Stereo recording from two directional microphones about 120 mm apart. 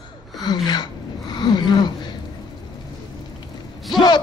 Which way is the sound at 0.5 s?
35° left (ahead or behind).